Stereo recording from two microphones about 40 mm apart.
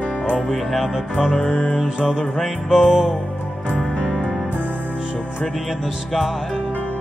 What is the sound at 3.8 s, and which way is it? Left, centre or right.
Music, left.